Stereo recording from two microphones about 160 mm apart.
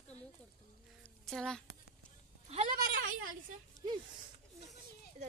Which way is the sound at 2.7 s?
60° right (ahead or behind).